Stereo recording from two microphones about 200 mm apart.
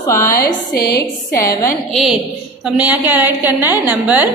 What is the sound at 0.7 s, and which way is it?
Speech, 50° left (ahead or behind).